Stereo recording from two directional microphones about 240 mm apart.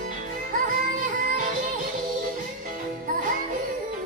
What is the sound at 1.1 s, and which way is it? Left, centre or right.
Music, right.